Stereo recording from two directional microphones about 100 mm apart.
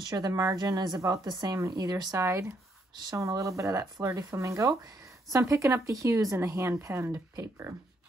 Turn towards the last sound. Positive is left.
turn(degrees=-35)  # may be behind; listen again after turning